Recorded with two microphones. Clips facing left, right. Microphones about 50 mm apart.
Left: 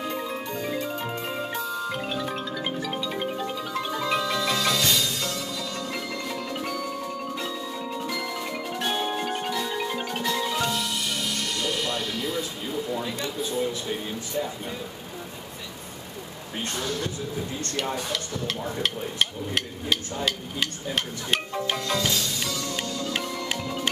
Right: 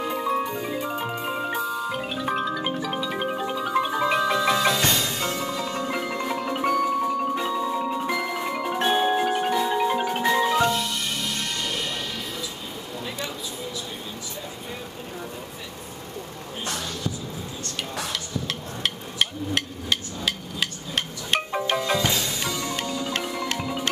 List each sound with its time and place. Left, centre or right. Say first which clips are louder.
0.0 s music: right 5 dB; centre
4.8 s music: right 2 dB; right
8.7 s marimba: right 6 dB; right
18.8 s a sound: right 1 dB; centre
21.7 s music: right 4 dB; centre